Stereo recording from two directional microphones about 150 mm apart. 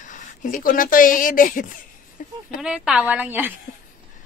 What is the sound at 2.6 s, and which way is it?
Speech, 5° right (ahead or behind).